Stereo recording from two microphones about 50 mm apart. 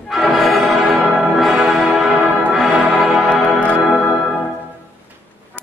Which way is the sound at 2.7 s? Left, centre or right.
Right.